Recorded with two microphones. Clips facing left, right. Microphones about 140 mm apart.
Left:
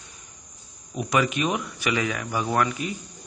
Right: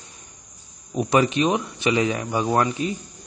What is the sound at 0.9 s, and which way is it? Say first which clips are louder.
A man's voice: right 4 dB; 30° right (ahead or behind).